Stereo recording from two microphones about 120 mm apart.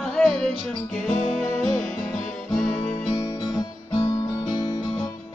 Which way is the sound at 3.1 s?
30° left (ahead or behind).